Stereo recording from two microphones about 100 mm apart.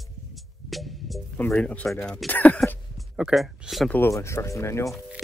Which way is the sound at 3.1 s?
5° right (ahead or behind).